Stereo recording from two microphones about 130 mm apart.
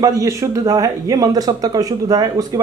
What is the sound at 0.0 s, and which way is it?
Speech, 25° right (ahead or behind).